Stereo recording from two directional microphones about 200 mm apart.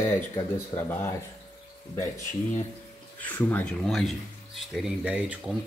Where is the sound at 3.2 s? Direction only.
10° left (ahead or behind).